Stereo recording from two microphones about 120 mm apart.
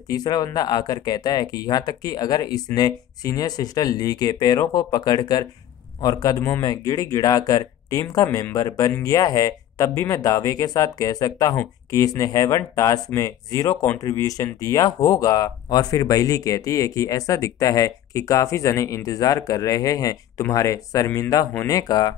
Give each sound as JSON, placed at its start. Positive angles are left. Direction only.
{"t": 0.1, "sound": "speech", "side_deg": 35}